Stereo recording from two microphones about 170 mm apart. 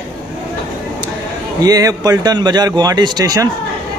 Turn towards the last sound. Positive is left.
turn(degrees=-20)  # may be behind; listen again after turning